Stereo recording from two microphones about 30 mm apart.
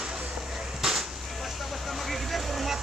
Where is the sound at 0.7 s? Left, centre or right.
Centre.